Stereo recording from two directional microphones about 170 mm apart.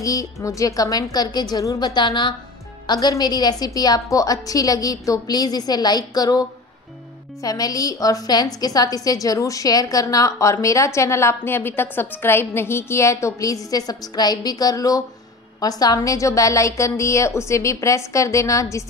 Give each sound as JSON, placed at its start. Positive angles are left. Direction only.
{"t": 0.0, "sound": "a woman's voice", "side_deg": 20}
{"t": 7.4, "sound": "a woman's voice", "side_deg": 20}